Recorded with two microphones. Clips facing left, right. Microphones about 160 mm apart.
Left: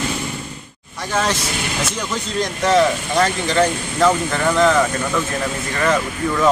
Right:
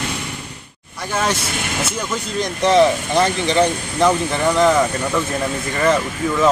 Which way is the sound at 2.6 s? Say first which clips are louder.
Right 2 dB; 20° right (ahead or behind).